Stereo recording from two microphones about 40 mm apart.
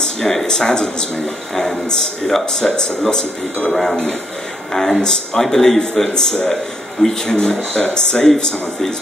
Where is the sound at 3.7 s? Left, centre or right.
Centre.